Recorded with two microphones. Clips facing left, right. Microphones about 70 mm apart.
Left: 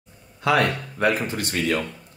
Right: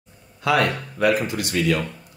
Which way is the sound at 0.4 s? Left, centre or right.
Left.